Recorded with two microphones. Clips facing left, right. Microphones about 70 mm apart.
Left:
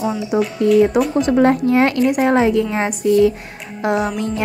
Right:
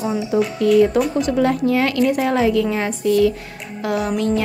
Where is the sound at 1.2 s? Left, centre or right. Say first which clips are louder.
Left 3 dB; left.